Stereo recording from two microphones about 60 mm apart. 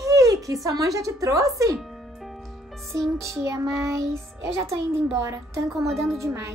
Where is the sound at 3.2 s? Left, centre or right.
Right.